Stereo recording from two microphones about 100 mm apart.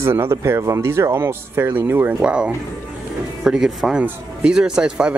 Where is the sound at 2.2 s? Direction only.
10° right (ahead or behind).